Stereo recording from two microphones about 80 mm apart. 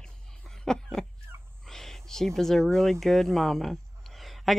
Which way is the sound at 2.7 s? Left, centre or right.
Centre.